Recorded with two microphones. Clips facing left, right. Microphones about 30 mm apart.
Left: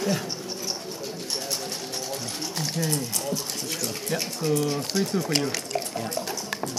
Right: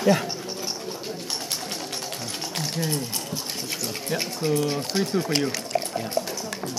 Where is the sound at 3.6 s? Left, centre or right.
Centre.